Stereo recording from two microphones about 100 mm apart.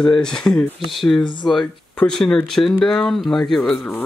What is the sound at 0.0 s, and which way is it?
Speech, 10° left (ahead or behind).